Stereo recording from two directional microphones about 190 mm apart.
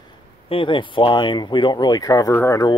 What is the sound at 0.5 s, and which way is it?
Speech, 25° left (ahead or behind).